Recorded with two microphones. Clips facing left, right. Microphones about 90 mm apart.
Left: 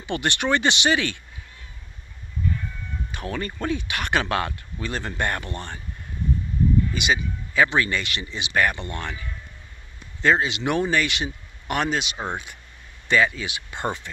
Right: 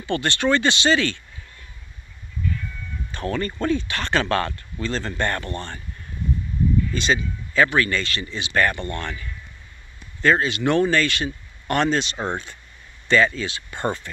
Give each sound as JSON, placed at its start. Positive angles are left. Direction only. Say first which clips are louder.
{"t": 0.0, "sound": "speech", "louder": "right 3 dB", "side_deg": 20}
{"t": 3.1, "sound": "speech", "louder": "right 5 dB", "side_deg": 10}
{"t": 6.9, "sound": "speech", "louder": "right 2 dB", "side_deg": 10}